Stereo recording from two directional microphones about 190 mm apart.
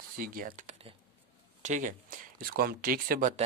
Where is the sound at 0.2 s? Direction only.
50° right (ahead or behind).